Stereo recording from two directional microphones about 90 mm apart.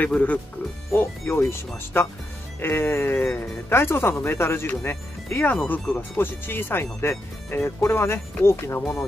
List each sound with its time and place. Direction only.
0.0 s speech: 15° left (ahead or behind)
0.9 s speech: 25° left (ahead or behind)
3.2 s speech: 15° left (ahead or behind)
3.6 s speech: 25° left (ahead or behind)